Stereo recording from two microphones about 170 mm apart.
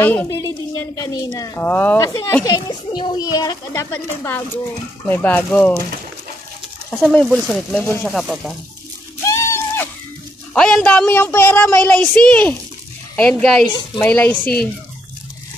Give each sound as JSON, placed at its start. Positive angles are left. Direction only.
{"t": 0.0, "sound": "a woman's voice", "side_deg": 10}
{"t": 7.0, "sound": "speech", "side_deg": 0}
{"t": 8.1, "sound": "speech", "side_deg": 0}
{"t": 9.2, "sound": "a sound", "side_deg": 15}
{"t": 10.5, "sound": "speech", "side_deg": 5}
{"t": 13.7, "sound": "a child's voice", "side_deg": 30}
{"t": 14.0, "sound": "speech", "side_deg": 10}